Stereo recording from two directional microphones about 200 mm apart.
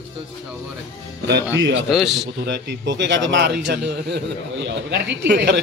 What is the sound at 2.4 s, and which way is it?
Mantra, 60° right (ahead or behind).